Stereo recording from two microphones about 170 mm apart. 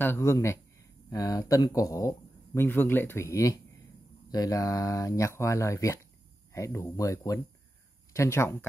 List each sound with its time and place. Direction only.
0.0 s speech: 15° left (ahead or behind)